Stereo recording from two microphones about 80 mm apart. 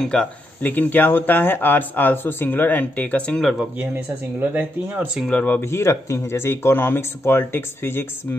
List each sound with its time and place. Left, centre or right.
0.0 s speech: centre
3.7 s speech: right
5.3 s speech: centre
5.6 s speech: left